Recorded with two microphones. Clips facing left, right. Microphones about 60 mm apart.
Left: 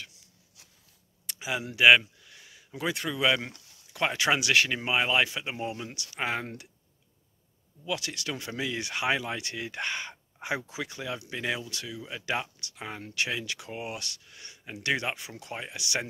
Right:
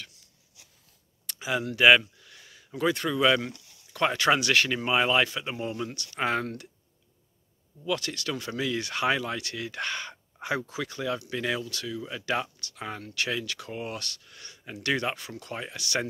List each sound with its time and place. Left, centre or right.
1.2 s speech: centre
6.4 s speech: centre
7.8 s speech: centre